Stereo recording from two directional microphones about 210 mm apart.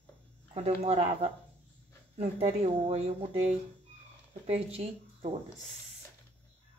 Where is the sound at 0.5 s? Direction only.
30° right (ahead or behind).